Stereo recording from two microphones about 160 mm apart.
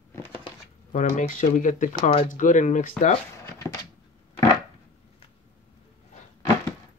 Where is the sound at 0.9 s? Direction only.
50° left (ahead or behind).